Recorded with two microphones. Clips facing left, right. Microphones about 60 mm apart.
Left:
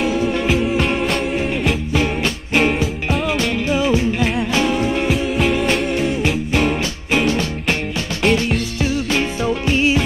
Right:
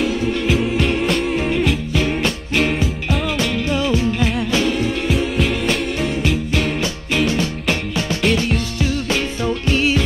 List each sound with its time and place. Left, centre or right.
0.0 s music: centre
2.8 s music: centre
3.6 s music: centre
4.8 s music: centre
6.2 s music: centre
8.2 s music: centre
9.4 s music: centre